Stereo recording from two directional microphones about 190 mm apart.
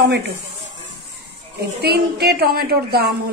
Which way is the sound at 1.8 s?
55° right (ahead or behind).